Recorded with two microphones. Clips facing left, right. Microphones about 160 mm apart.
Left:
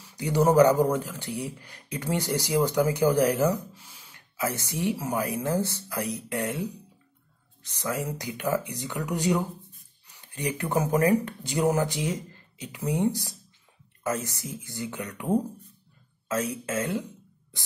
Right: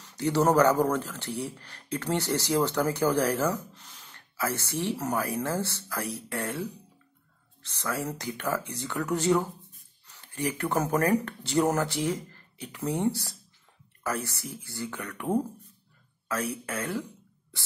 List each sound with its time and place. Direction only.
0.0 s speech: 10° left (ahead or behind)
16.3 s speech: 20° left (ahead or behind)